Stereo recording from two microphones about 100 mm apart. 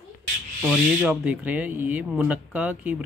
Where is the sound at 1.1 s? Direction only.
15° right (ahead or behind).